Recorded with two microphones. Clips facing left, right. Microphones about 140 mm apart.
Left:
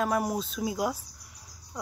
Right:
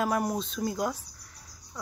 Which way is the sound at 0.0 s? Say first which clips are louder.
Even; centre (ahead or behind).